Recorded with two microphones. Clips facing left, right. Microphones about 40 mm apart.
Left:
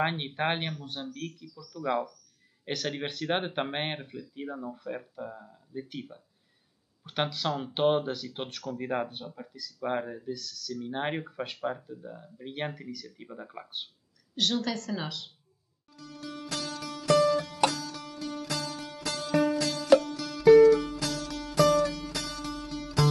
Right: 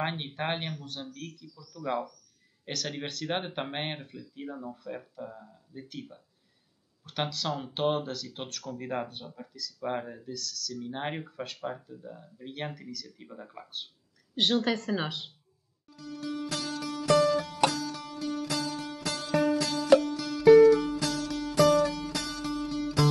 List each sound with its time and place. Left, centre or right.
0.0 s speech: centre
14.3 s speech: right
15.9 s music: centre